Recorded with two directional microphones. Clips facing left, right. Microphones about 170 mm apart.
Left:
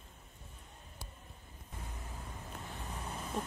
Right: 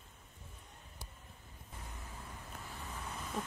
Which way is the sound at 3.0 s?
30° left (ahead or behind).